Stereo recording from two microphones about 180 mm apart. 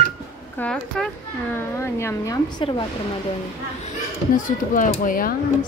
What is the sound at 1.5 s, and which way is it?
A woman's voice, 15° left (ahead or behind).